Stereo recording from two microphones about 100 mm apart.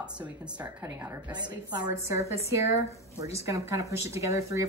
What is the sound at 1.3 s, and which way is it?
Speech, 45° right (ahead or behind).